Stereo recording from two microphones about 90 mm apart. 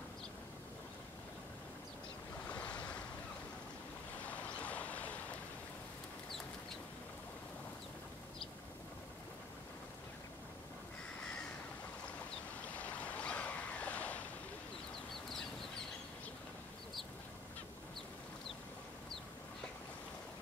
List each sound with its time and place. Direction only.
2.4 s waves: 15° left (ahead or behind)
4.3 s boat: 15° left (ahead or behind)
12.6 s boat: 15° left (ahead or behind)